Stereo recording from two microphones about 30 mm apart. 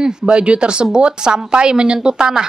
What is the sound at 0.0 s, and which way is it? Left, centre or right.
A woman's voice, right.